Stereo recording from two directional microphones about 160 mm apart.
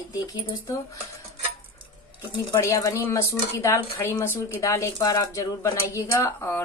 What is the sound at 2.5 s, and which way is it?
A woman's voice, 20° left (ahead or behind).